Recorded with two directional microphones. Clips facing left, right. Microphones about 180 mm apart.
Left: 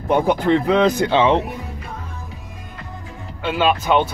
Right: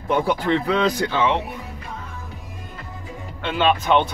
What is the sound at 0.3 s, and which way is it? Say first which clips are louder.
Speech: left 4 dB; 20° left (ahead or behind).